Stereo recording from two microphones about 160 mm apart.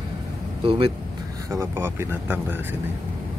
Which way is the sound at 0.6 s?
35° right (ahead or behind).